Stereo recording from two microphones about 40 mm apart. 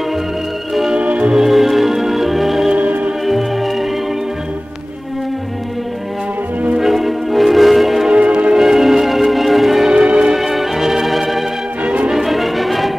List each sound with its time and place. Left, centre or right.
0.9 s music: right
1.3 s music: centre
2.7 s music: right
6.8 s music: centre
8.1 s music: right
8.5 s music: centre
9.8 s music: right
10.3 s organ: centre
11.8 s music: right
12.1 s music: centre